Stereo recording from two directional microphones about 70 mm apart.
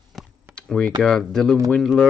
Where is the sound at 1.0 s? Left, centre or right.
Centre.